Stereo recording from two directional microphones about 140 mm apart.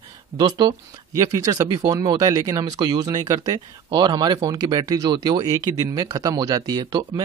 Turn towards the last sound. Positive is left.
turn(degrees=-30)  # may be behind; listen again after turning